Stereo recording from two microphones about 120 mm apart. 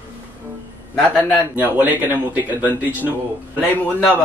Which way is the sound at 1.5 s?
15° right (ahead or behind).